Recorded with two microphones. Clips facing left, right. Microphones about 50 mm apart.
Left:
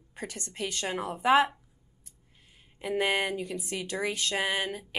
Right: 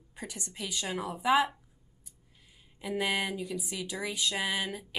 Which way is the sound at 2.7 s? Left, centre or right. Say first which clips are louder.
Left 3 dB; left.